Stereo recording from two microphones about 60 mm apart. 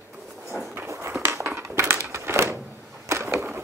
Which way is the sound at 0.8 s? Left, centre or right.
Right.